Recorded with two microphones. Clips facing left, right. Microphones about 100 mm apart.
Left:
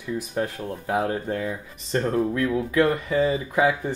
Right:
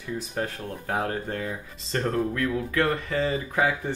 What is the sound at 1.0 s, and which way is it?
Speech, 15° left (ahead or behind).